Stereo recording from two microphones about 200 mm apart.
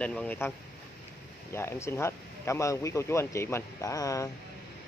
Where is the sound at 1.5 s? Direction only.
10° left (ahead or behind).